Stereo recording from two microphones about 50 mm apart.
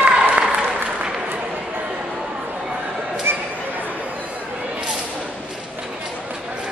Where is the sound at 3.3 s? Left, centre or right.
Right.